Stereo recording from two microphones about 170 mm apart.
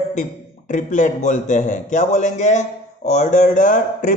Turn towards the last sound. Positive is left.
turn(degrees=45)  # may be behind; listen again after turning